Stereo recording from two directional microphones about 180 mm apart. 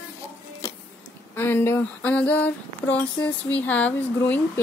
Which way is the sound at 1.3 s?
15° left (ahead or behind).